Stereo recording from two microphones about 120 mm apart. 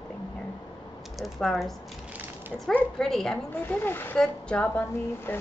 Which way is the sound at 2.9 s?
5° left (ahead or behind).